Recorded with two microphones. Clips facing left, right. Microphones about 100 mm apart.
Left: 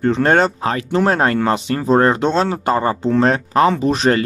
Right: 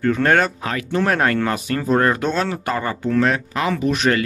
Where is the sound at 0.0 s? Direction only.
25° left (ahead or behind).